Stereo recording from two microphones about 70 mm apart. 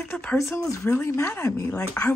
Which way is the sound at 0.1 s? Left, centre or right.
Centre.